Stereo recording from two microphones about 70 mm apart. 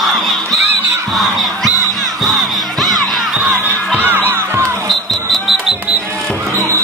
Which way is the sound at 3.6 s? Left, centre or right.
Right.